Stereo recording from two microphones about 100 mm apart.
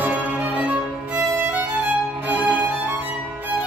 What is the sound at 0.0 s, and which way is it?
Music, 15° right (ahead or behind).